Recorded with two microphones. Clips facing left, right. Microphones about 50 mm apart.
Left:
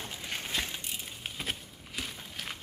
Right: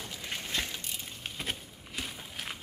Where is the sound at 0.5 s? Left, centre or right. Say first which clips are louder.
Even; centre.